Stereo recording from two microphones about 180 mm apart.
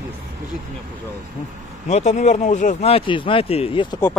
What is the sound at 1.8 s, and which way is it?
Speech, 40° left (ahead or behind).